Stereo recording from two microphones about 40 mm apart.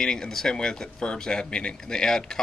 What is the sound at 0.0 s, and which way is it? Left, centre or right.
Speech, centre.